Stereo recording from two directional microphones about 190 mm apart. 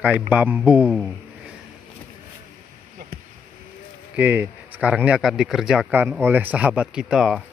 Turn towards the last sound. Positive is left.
turn(degrees=0)  # may be behind; listen again after turning